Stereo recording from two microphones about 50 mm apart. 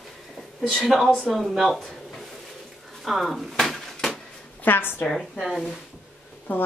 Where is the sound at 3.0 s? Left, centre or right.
Centre.